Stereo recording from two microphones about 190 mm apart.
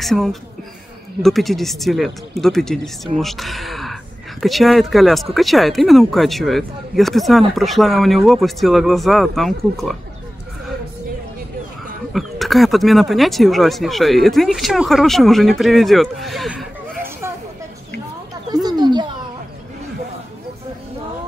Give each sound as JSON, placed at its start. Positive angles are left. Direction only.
{"t": 0.0, "sound": "speech", "side_deg": 0}
{"t": 12.1, "sound": "speech", "side_deg": 0}
{"t": 18.5, "sound": "a sound", "side_deg": -20}